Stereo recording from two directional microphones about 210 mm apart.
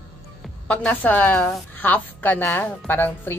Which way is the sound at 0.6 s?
10° left (ahead or behind).